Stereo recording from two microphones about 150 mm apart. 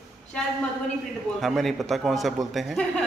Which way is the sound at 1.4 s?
Centre (ahead or behind).